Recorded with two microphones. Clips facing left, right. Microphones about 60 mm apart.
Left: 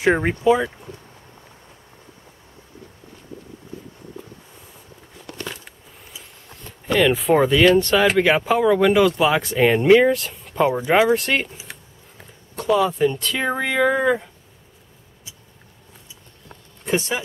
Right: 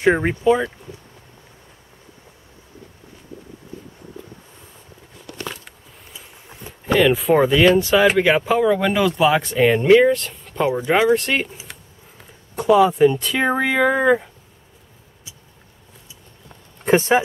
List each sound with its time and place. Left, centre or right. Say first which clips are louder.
0.0 s speech: right 1 dB; centre
6.5 s a sound: right 3 dB; centre
7.0 s speech: right 1 dB; centre
12.5 s speech: right 5 dB; centre
16.8 s speech: right 7 dB; right